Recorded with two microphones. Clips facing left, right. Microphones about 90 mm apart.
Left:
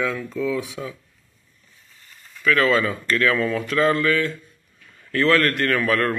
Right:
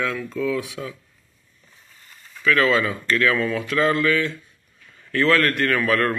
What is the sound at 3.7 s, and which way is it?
Mantra, 30° left (ahead or behind).